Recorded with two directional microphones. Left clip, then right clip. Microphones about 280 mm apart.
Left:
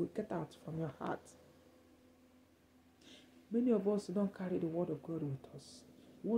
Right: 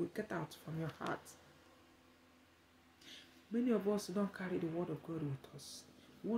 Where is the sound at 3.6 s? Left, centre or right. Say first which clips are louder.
Left 2 dB; centre.